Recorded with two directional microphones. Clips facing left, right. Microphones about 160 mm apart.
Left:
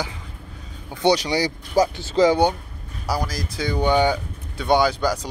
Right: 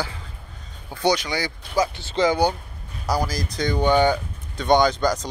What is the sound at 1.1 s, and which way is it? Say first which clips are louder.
Speech: left 4 dB; 35° left (ahead or behind).